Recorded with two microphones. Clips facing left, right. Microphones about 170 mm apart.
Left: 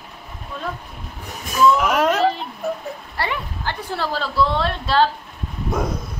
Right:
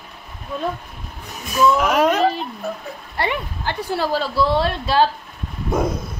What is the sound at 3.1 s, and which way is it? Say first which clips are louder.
A woman's voice: right 4 dB; 20° right (ahead or behind).